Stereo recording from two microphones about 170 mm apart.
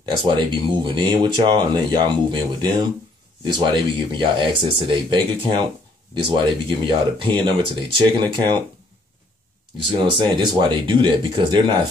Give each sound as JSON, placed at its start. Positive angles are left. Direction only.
{"t": 0.0, "sound": "speech", "side_deg": -30}
{"t": 3.4, "sound": "speech", "side_deg": -25}
{"t": 9.9, "sound": "speech", "side_deg": -30}